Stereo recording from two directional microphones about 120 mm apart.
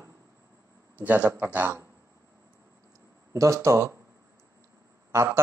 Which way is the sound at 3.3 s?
25° right (ahead or behind).